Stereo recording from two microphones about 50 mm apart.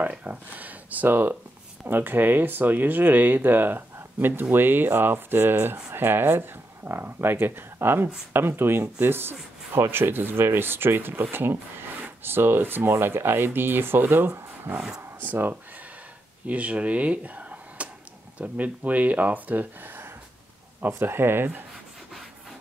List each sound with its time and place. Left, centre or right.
0.0 s speech: right
1.0 s speech: right
16.4 s speech: right